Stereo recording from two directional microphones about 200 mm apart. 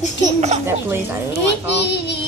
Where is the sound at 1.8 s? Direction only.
55° left (ahead or behind).